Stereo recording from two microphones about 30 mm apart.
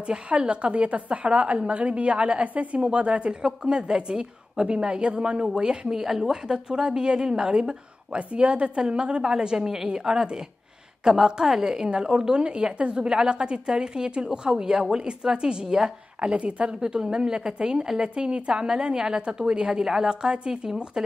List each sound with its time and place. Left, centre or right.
0.5 s a woman's voice: right
2.4 s speech: right
2.8 s a woman's voice: right
5.9 s a woman's voice: centre
6.4 s a woman's voice: right
8.1 s a woman's voice: right
10.1 s a woman's voice: centre
11.4 s a woman's voice: centre
11.7 s a woman's voice: right
16.2 s a woman's voice: right
16.8 s a woman's voice: right
18.1 s a woman's voice: right
19.8 s a woman's voice: centre
20.1 s a woman's voice: right